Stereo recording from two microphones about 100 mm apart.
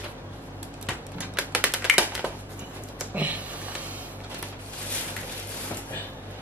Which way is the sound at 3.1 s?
15° right (ahead or behind).